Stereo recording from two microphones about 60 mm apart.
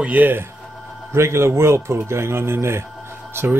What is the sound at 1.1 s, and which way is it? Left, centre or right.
Speech, right.